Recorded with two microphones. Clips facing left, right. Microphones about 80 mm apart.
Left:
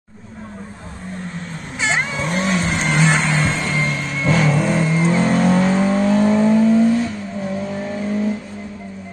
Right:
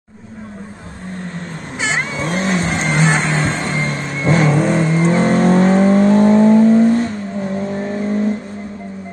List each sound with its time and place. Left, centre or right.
2.0 s vehicle: right